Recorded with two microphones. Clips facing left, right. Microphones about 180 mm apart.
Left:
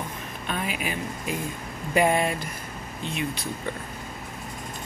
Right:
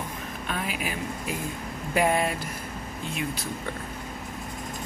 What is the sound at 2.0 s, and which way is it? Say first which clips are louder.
Speech: left 2 dB; centre (ahead or behind).